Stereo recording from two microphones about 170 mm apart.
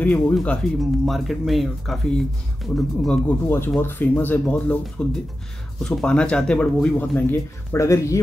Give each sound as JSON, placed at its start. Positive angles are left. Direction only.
{"t": 0.0, "sound": "speech", "side_deg": 5}
{"t": 3.4, "sound": "speech", "side_deg": 15}